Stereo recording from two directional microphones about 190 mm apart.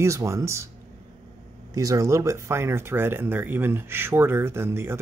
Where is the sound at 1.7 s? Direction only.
15° right (ahead or behind).